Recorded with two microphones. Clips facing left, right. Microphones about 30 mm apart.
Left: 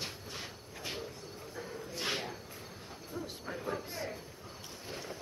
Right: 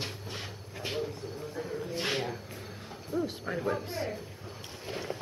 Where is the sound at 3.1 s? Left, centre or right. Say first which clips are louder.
Right 11 dB; right.